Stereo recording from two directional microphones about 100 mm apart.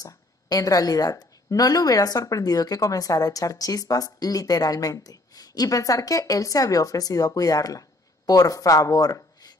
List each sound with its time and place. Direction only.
0.0 s a woman's voice: 40° left (ahead or behind)